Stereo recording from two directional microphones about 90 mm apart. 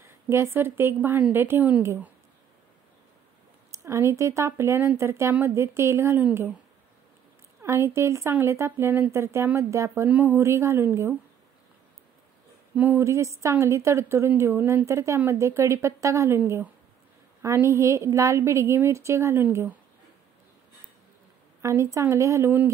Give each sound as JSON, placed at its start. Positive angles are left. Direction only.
{"t": 0.0, "sound": "a woman's voice", "side_deg": -25}
{"t": 3.7, "sound": "a woman's voice", "side_deg": -30}
{"t": 7.6, "sound": "a woman's voice", "side_deg": -30}
{"t": 10.0, "sound": "a woman's voice", "side_deg": -20}
{"t": 12.7, "sound": "speech", "side_deg": -20}
{"t": 13.0, "sound": "a woman's voice", "side_deg": -35}
{"t": 14.9, "sound": "a woman's voice", "side_deg": -30}
{"t": 21.5, "sound": "a woman's voice", "side_deg": -35}